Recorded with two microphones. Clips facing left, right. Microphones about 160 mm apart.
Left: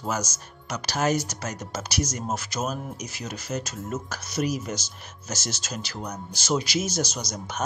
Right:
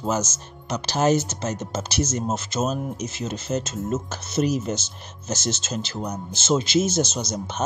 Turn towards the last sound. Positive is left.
turn(degrees=-25)  # may be behind; listen again after turning